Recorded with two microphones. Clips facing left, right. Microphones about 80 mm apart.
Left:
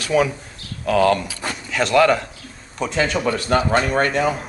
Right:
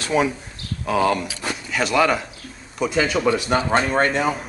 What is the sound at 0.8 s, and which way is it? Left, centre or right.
Speech, centre.